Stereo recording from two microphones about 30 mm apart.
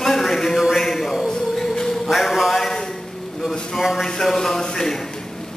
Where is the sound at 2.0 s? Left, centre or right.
Centre.